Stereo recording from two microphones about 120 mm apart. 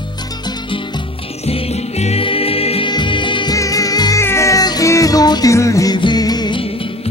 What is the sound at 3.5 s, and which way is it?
Music, 30° left (ahead or behind).